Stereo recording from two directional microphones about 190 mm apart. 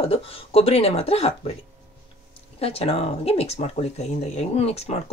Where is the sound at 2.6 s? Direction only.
30° left (ahead or behind).